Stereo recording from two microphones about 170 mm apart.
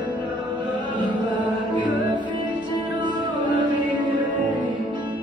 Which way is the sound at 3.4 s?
25° right (ahead or behind).